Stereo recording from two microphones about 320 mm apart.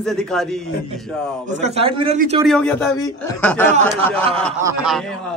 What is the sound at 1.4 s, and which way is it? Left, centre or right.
A man's voice, right.